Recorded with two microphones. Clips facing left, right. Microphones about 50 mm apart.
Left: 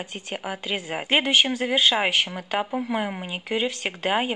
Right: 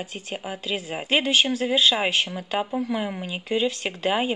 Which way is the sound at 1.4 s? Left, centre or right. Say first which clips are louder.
Right 1 dB; centre.